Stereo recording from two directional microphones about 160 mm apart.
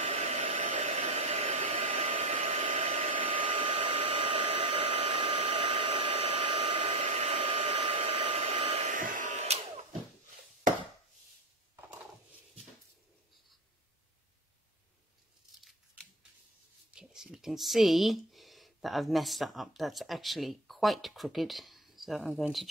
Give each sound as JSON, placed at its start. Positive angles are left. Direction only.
{"t": 0.0, "sound": "hair dryer", "side_deg": -40}
{"t": 0.4, "sound": "hair dryer", "side_deg": -55}
{"t": 0.7, "sound": "hair dryer", "side_deg": -40}
{"t": 11.7, "sound": "a sound", "side_deg": -10}
{"t": 16.9, "sound": "speech", "side_deg": -5}